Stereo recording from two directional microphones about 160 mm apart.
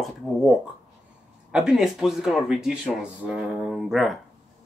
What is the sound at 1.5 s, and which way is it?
Speech, 5° right (ahead or behind).